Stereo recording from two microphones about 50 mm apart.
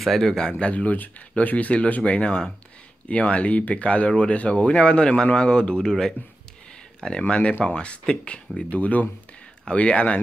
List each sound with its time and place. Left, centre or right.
0.0 s speech: centre; by 5.9 s left
5.9 s speech: centre
8.6 s speech: left